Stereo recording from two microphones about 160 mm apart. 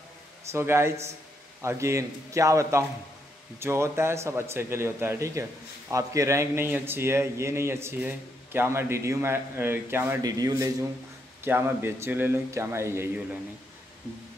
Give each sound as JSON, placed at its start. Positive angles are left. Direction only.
{"t": 0.5, "sound": "a man's voice", "side_deg": -15}